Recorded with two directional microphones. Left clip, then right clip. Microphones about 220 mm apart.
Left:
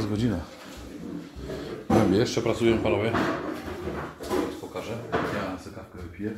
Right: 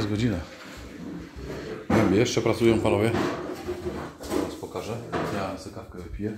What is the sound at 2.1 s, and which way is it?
Speech, 15° right (ahead or behind).